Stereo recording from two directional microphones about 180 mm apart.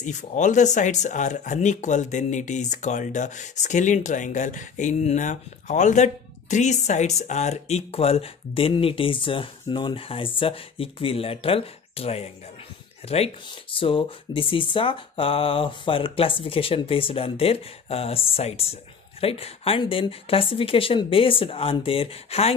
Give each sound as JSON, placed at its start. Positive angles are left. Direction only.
{"t": 0.0, "sound": "speech", "side_deg": 45}